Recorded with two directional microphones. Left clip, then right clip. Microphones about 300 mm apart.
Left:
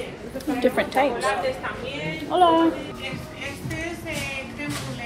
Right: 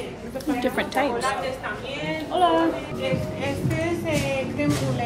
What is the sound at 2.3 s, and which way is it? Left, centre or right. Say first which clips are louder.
Speech: left 3 dB; centre.